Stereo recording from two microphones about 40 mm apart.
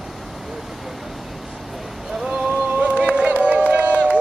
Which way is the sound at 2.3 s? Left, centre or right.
Right.